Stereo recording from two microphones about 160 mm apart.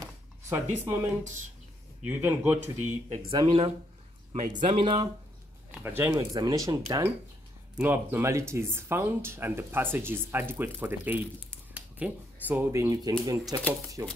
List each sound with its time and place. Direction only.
0.0 s a sound: 15° right (ahead or behind)
2.0 s speech: 10° right (ahead or behind)
3.3 s speech: 30° right (ahead or behind)
4.3 s speech: 50° right (ahead or behind)
4.6 s speech: 35° right (ahead or behind)
5.8 s speech: 10° right (ahead or behind)